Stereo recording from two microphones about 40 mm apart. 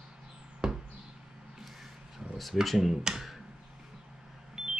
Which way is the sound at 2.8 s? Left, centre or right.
Centre.